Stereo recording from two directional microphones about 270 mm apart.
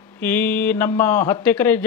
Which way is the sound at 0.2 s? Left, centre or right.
Centre.